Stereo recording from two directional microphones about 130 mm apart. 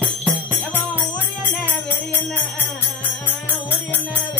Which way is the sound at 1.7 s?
15° left (ahead or behind).